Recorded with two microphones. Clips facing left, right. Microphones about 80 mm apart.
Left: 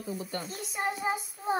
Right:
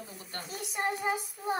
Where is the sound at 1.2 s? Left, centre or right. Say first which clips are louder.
Left 2 dB; left.